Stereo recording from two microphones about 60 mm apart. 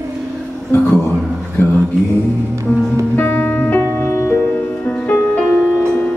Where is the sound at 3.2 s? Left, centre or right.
Left.